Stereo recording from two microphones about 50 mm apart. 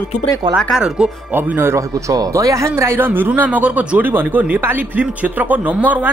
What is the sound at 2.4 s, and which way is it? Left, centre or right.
Speech, right.